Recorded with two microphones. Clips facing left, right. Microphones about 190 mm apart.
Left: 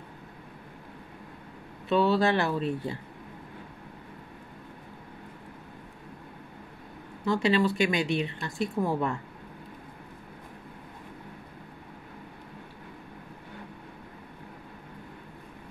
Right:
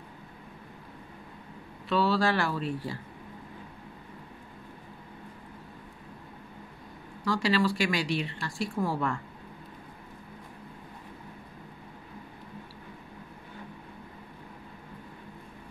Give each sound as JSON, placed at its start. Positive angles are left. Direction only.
{"t": 1.9, "sound": "speech", "side_deg": 20}
{"t": 7.2, "sound": "speech", "side_deg": 20}